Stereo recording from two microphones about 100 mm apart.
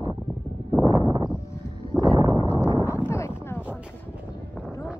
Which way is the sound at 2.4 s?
30° left (ahead or behind).